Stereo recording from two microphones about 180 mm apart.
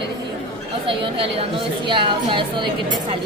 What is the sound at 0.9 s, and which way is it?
A woman's voice, 30° right (ahead or behind).